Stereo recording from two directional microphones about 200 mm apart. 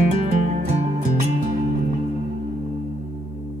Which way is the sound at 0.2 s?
35° right (ahead or behind).